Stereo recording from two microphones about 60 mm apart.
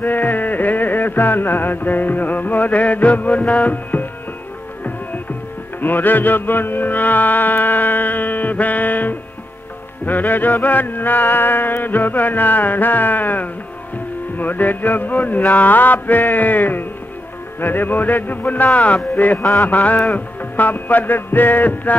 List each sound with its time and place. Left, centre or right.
0.0 s music: left
5.8 s music: left
17.6 s a man's voice: left
20.5 s music: left